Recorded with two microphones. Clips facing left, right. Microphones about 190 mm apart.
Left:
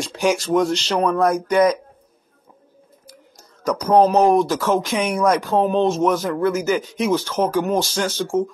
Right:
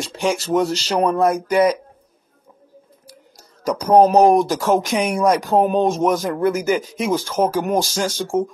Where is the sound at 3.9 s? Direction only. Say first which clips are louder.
Right 2 dB; 35° right (ahead or behind).